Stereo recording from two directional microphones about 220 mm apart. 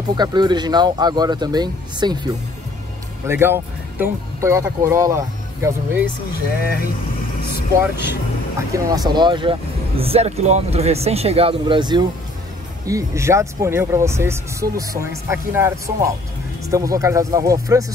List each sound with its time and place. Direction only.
0.1 s speech: 20° right (ahead or behind)
8.0 s speech: 10° right (ahead or behind)